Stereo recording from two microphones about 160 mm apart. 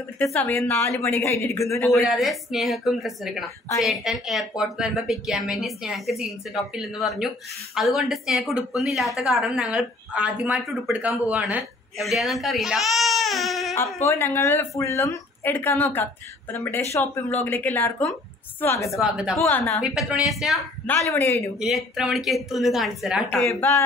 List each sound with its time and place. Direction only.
0.3 s a woman's voice: 10° left (ahead or behind)
2.0 s speech: centre (ahead or behind)
13.9 s a woman's voice: 20° left (ahead or behind)
18.9 s speech: centre (ahead or behind)
19.3 s a woman's voice: 15° left (ahead or behind)
19.8 s speech: centre (ahead or behind)
20.8 s a woman's voice: 10° left (ahead or behind)
21.5 s speech: centre (ahead or behind)
23.5 s speech: 20° left (ahead or behind)